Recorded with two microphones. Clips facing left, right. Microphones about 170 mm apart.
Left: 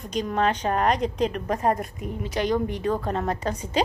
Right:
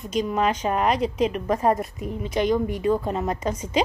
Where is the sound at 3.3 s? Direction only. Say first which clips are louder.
Right 2 dB; 40° left (ahead or behind).